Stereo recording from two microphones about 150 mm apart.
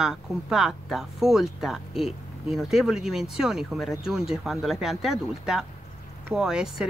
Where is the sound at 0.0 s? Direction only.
5° right (ahead or behind).